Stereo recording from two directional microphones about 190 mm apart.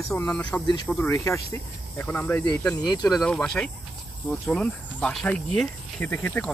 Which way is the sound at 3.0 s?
Centre (ahead or behind).